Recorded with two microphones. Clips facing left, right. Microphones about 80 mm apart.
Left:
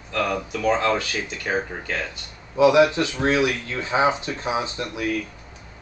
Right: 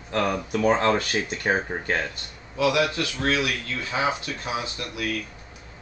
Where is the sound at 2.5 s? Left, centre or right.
Left.